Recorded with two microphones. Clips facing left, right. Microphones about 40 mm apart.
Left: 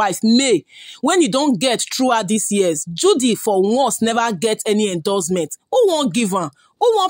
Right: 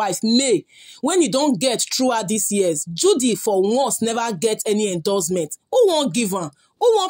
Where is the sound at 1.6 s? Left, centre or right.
Left.